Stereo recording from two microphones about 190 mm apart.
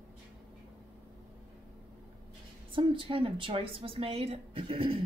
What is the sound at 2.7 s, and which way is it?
A woman's voice, 25° right (ahead or behind).